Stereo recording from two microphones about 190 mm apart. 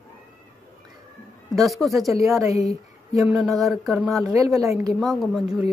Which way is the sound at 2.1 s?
15° right (ahead or behind).